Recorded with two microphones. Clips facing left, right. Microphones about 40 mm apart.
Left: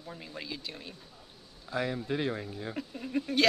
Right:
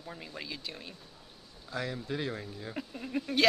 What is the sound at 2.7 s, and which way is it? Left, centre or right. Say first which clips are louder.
Speech: left 1 dB; centre.